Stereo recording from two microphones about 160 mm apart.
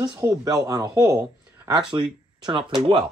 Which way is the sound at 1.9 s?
30° right (ahead or behind).